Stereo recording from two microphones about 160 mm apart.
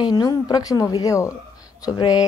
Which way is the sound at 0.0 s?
25° left (ahead or behind).